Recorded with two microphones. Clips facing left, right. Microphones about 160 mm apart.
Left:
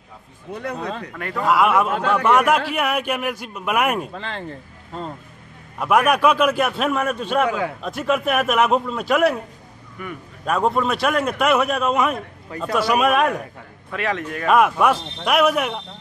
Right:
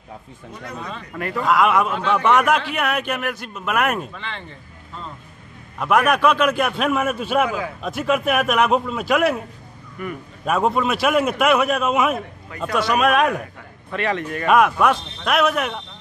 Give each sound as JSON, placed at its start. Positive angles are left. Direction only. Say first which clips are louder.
{"t": 1.1, "sound": "a man's voice", "louder": "right 1 dB", "side_deg": 0}
{"t": 1.9, "sound": "a man's voice", "louder": "left 1 dB", "side_deg": 45}
{"t": 2.2, "sound": "a man's voice", "louder": "even", "side_deg": 5}
{"t": 4.1, "sound": "speech", "louder": "left 4 dB", "side_deg": 40}
{"t": 5.8, "sound": "a man's voice", "louder": "even", "side_deg": 5}